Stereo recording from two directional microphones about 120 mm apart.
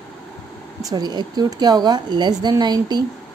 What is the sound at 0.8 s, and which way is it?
A woman's voice, 35° right (ahead or behind).